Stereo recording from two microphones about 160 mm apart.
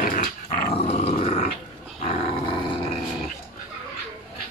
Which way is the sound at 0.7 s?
40° left (ahead or behind).